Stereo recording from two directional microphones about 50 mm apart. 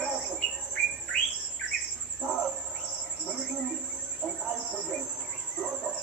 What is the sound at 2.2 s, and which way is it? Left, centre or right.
Bird, centre.